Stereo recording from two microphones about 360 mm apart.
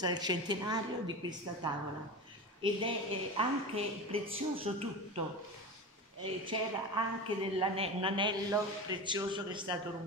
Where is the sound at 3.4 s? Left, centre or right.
Centre.